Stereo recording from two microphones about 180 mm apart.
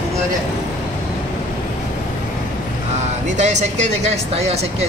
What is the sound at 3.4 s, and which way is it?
A woman's voice, 40° right (ahead or behind).